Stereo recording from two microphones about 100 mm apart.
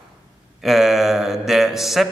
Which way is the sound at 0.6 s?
Centre (ahead or behind).